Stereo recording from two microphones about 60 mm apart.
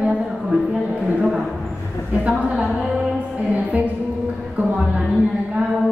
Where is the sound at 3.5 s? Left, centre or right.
Right.